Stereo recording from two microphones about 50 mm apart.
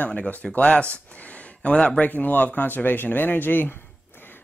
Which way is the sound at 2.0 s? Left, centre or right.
Left.